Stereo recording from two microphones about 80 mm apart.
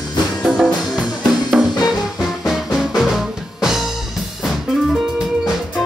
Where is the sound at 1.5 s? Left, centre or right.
Centre.